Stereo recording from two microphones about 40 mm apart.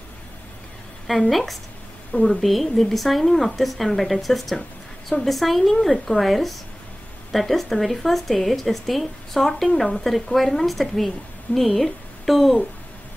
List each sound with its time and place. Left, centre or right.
1.3 s speech: centre